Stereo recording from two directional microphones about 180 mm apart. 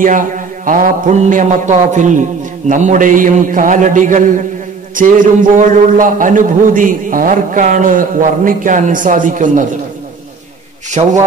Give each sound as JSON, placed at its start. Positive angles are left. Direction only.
{"t": 0.7, "sound": "a man's voice", "side_deg": -50}
{"t": 10.9, "sound": "a man's voice", "side_deg": -40}